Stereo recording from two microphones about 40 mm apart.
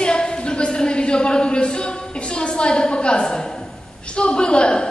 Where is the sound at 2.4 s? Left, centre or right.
Left.